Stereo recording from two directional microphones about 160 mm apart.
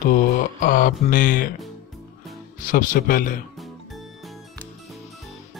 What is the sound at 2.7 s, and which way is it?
Speech, 60° left (ahead or behind).